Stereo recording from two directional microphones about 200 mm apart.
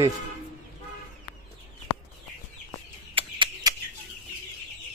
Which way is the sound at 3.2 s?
25° right (ahead or behind).